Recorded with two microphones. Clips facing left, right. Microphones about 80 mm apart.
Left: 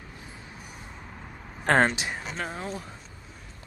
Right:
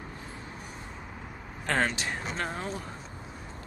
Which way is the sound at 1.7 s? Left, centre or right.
Left.